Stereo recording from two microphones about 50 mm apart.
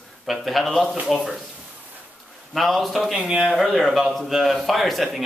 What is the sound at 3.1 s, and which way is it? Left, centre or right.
Speech, centre.